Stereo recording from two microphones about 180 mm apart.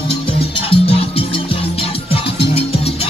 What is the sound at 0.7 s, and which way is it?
Music, 30° left (ahead or behind).